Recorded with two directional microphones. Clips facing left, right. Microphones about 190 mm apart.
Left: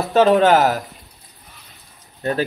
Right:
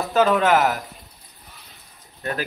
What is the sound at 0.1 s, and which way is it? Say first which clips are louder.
Speech: left 5 dB; 30° left (ahead or behind).